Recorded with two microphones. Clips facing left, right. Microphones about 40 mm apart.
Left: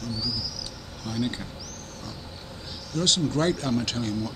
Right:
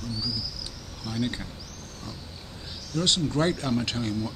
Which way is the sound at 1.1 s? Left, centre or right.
Centre.